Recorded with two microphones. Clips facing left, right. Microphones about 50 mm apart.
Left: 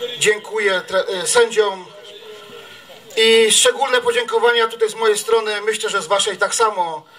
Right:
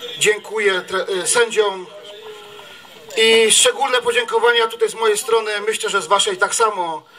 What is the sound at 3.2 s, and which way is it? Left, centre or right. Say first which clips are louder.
A man's voice: even; right.